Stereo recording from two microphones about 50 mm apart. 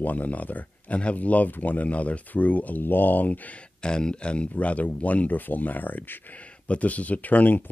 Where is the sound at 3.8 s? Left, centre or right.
Centre.